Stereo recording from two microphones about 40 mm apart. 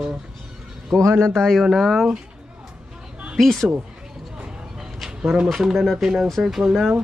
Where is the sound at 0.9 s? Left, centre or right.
Centre.